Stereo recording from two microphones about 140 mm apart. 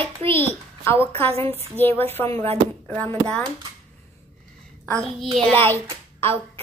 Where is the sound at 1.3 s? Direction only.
45° right (ahead or behind).